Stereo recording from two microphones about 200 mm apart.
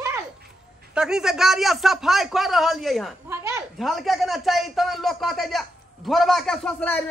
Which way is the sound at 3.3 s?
15° right (ahead or behind).